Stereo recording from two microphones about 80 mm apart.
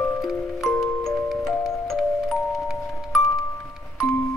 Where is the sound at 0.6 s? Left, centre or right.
Centre.